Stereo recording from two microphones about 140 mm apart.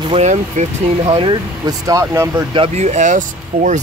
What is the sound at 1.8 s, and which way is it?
Speech, 20° right (ahead or behind).